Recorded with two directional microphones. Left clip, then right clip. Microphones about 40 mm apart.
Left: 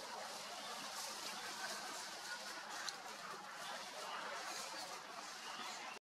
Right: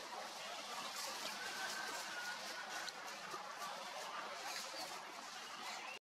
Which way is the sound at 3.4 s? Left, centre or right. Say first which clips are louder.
Right 1 dB; right.